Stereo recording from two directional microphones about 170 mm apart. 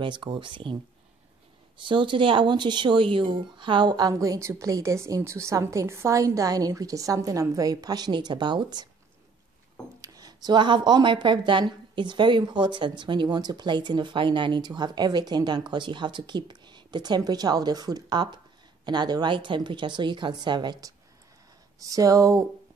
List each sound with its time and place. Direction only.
0.0 s speech: 30° right (ahead or behind)
1.8 s speech: 30° right (ahead or behind)
10.0 s speech: 20° right (ahead or behind)